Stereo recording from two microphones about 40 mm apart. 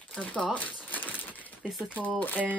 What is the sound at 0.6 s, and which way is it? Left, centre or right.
Typewriter, left.